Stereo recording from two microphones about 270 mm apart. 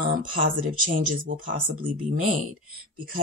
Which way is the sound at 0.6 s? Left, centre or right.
Right.